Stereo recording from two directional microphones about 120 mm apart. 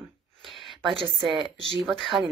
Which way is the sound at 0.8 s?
45° right (ahead or behind).